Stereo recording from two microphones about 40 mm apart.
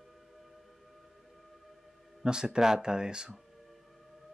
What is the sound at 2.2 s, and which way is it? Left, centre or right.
Speech, centre.